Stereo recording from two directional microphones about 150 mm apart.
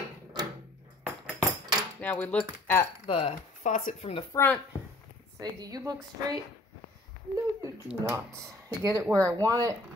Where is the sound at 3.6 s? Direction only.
55° left (ahead or behind).